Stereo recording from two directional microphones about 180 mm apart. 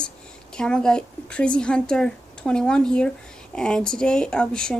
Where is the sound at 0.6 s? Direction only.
5° left (ahead or behind).